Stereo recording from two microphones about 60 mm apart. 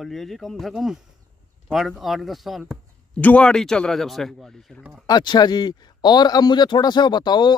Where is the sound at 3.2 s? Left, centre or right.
Left.